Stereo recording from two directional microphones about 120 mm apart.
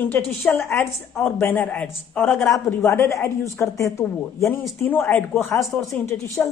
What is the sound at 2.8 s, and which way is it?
A woman's voice, 25° left (ahead or behind).